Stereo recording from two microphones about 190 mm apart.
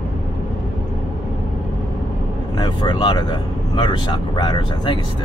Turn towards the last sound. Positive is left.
turn(degrees=25)  # may be behind; listen again after turning